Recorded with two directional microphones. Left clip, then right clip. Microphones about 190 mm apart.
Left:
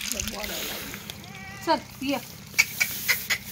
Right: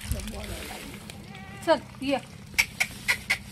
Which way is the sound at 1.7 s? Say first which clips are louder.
Right 1 dB; 30° right (ahead or behind).